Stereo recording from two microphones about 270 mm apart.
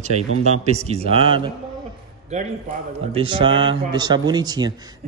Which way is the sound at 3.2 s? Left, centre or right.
Centre.